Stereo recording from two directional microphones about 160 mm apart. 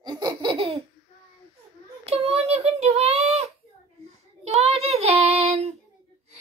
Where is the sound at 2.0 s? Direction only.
40° right (ahead or behind).